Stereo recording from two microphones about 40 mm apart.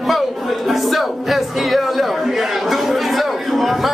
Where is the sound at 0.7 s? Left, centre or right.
Centre.